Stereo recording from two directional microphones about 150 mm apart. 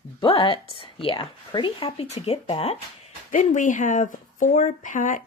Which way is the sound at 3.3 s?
60° left (ahead or behind).